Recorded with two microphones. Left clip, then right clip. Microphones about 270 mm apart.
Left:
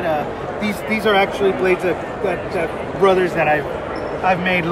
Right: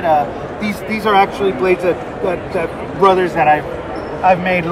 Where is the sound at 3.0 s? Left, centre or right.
Centre.